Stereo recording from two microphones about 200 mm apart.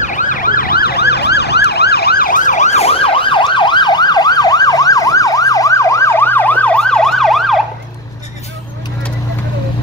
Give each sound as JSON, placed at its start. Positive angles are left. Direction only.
{"t": 0.0, "sound": "emergency vehicle", "side_deg": 40}